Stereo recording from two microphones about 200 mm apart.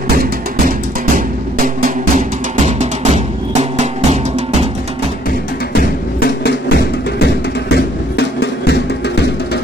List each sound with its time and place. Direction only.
0.2 s music: 45° right (ahead or behind)
6.1 s music: 50° left (ahead or behind)